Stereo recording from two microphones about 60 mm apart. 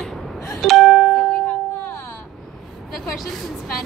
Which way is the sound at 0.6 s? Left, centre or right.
Centre.